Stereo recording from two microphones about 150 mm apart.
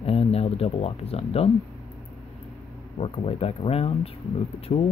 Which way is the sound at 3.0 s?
40° left (ahead or behind).